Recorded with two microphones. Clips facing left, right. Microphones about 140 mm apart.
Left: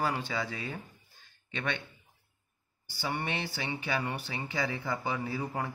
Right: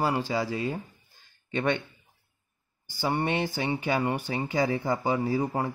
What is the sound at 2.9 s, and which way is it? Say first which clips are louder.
A man's voice: right 7 dB; 45° right (ahead or behind).